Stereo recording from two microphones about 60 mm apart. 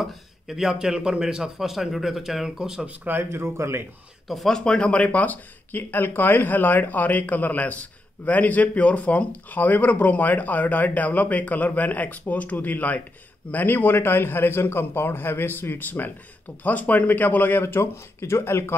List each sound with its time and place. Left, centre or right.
0.0 s a man's voice: centre
3.2 s speech: right
4.3 s a man's voice: centre; by 18.8 s left